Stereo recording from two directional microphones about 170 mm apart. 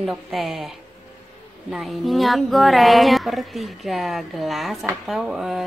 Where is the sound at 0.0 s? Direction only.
Centre (ahead or behind).